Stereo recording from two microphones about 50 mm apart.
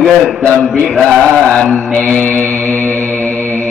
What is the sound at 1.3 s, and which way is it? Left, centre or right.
Mantra, left.